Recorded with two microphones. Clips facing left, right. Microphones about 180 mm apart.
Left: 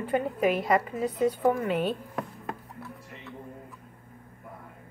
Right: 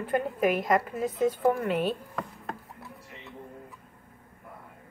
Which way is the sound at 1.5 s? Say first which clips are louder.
Even; 5° right (ahead or behind).